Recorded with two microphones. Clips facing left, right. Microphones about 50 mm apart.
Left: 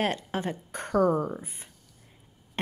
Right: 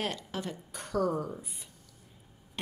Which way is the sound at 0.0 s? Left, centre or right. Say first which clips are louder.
Left 6 dB; left.